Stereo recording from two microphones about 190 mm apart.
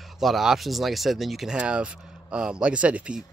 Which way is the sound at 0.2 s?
Centre (ahead or behind).